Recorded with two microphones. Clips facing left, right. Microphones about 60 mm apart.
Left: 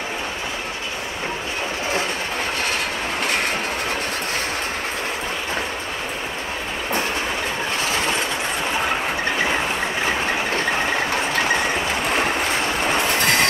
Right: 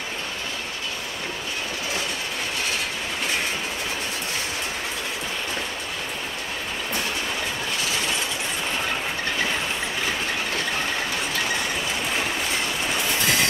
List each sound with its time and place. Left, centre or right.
3.3 s train: left
7.8 s train: left
10.0 s a sound: left